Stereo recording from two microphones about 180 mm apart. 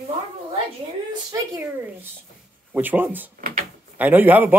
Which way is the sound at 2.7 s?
10° right (ahead or behind).